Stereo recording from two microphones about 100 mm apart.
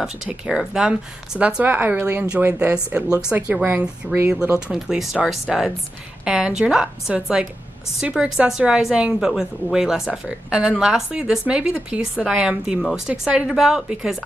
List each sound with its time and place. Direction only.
0.0 s a woman's voice: 5° right (ahead or behind); by 4.4 s 25° right (ahead or behind)
4.4 s a woman's voice: 10° right (ahead or behind)